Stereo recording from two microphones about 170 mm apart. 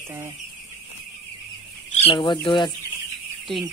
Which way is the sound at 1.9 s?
35° left (ahead or behind).